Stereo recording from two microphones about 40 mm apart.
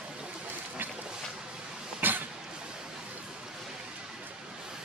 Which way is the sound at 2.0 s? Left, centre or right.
Right.